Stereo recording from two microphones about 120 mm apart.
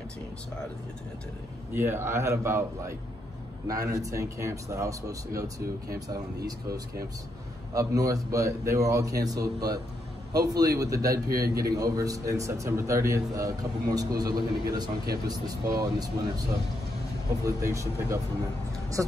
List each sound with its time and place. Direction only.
1.7 s a man's voice: 20° right (ahead or behind)
7.7 s a man's voice: 30° right (ahead or behind)
17.5 s a man's voice: 25° right (ahead or behind)